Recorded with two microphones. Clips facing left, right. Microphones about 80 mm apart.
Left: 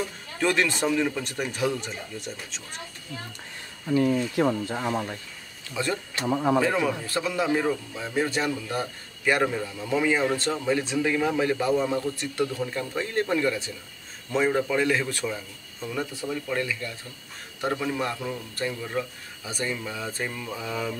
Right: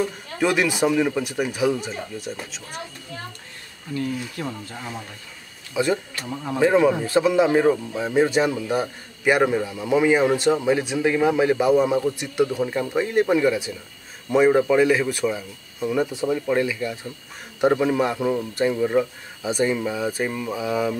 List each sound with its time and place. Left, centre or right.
0.4 s speech: centre
3.9 s speech: left
5.8 s speech: centre
6.1 s speech: left
6.6 s speech: right